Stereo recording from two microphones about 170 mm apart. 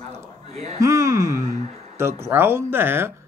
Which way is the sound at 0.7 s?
20° right (ahead or behind).